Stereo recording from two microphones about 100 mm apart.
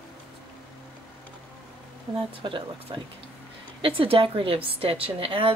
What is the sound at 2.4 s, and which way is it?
Speech, 55° right (ahead or behind).